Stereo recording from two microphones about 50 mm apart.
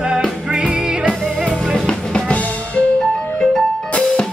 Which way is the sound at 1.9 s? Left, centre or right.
Centre.